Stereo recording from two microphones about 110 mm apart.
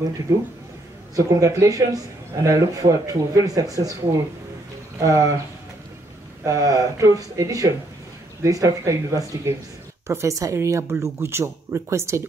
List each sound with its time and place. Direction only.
1.1 s a man's voice: 30° right (ahead or behind)
4.9 s speech: 30° right (ahead or behind)
6.4 s a man's voice: 30° right (ahead or behind)